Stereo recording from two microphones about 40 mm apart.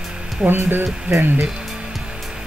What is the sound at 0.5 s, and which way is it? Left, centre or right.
Speech, right.